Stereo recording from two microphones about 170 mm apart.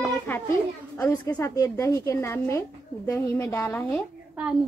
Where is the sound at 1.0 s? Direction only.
15° left (ahead or behind).